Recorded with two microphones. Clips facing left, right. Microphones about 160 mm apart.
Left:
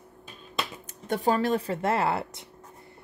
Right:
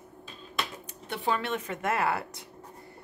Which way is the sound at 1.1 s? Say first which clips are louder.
Left 6 dB; 40° left (ahead or behind).